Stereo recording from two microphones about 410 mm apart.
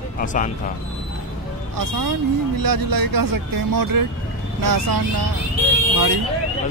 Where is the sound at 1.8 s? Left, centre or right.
Right.